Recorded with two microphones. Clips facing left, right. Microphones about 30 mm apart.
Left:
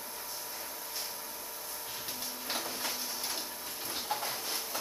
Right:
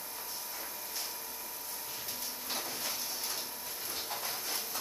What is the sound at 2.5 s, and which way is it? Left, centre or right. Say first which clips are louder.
Printer: left 2 dB; centre.